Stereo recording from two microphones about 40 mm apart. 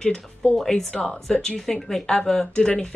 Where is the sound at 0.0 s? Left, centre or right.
Centre.